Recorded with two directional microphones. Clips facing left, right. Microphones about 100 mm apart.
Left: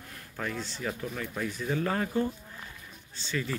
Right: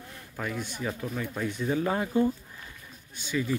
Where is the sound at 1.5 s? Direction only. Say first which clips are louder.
Right 3 dB; 20° right (ahead or behind).